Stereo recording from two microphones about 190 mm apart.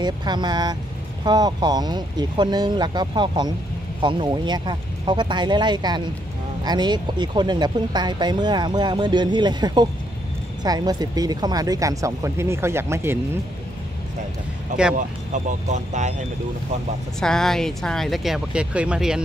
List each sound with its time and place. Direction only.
0.0 s speech: 25° right (ahead or behind)
15.0 s speech: 40° right (ahead or behind)
17.2 s speech: 5° left (ahead or behind)